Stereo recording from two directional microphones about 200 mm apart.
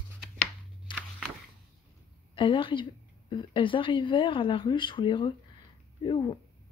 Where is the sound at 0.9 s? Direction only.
25° left (ahead or behind).